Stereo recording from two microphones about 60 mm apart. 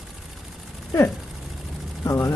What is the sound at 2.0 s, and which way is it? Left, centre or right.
Speech, left.